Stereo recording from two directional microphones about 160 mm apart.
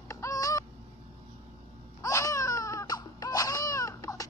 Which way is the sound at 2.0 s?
20° left (ahead or behind).